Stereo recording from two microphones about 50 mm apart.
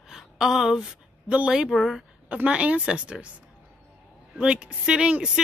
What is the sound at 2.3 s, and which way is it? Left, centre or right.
Speech, right.